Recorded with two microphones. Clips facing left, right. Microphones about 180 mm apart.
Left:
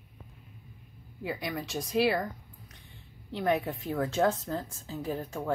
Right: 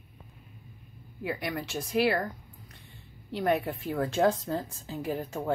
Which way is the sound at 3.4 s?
10° right (ahead or behind).